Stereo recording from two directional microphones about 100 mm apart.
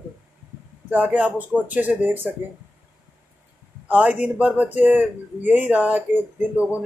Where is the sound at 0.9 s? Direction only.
15° right (ahead or behind).